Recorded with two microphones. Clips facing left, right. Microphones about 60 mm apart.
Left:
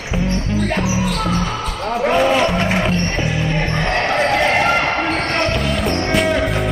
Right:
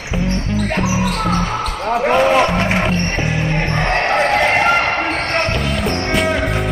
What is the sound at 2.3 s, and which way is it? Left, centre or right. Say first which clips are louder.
Music: right 2 dB; right.